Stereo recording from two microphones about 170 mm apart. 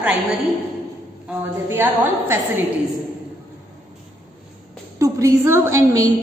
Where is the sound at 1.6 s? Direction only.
15° right (ahead or behind).